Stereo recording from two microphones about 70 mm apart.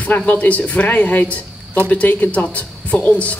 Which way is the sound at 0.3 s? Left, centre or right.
Left.